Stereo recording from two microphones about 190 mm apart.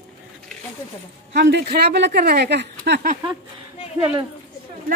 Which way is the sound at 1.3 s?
60° right (ahead or behind).